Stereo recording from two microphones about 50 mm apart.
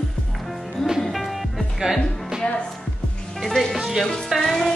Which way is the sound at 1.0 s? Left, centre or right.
Centre.